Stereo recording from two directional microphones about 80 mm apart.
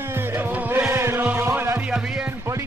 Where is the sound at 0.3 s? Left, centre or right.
Right.